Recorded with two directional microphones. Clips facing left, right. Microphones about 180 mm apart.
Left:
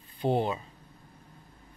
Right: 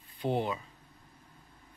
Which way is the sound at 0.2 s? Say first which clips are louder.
Left 4 dB; 30° left (ahead or behind).